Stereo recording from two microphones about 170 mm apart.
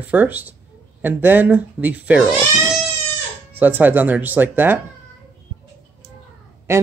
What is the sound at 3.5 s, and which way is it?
Speech, 10° right (ahead or behind).